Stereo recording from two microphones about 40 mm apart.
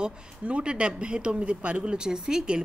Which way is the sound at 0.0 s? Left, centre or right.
Right.